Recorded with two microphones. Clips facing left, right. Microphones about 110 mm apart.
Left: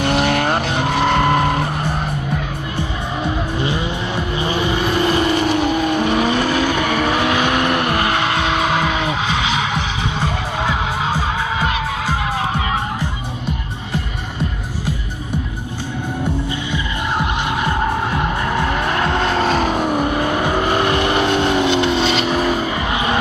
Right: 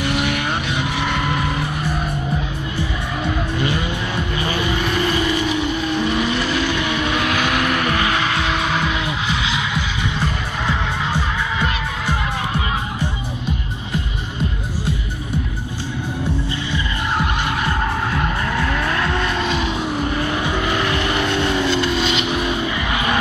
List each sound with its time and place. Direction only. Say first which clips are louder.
0.0 s vehicle: left 4 dB; 70° left (ahead or behind)
0.4 s vehicle: left 5 dB; 45° left (ahead or behind)
0.7 s vehicle: left 5 dB; 60° left (ahead or behind)
1.2 s vehicle: left 6 dB; 50° left (ahead or behind)
4.4 s vehicle: left 3 dB; 25° left (ahead or behind)
5.5 s vehicle: left 4 dB; 55° left (ahead or behind)
7.2 s vehicle: left 3 dB; 30° left (ahead or behind)
18.1 s vehicle: left 2 dB; 25° left (ahead or behind); by 21.1 s 45° left (ahead or behind)
21.1 s vehicle: left 3 dB; 30° left (ahead or behind)